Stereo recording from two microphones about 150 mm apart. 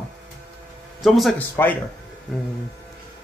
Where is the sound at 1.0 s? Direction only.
Centre (ahead or behind).